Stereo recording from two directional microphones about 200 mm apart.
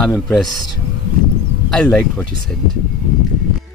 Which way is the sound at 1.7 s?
5° left (ahead or behind).